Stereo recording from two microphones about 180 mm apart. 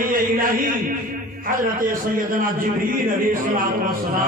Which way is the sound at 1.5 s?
50° right (ahead or behind).